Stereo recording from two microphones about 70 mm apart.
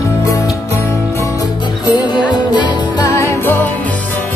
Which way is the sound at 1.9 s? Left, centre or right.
Left.